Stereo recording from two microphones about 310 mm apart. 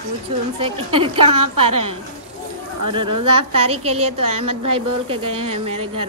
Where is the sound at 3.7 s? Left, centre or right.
Centre.